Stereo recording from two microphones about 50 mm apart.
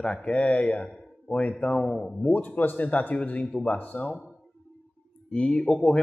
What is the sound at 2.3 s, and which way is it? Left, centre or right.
Speech, left.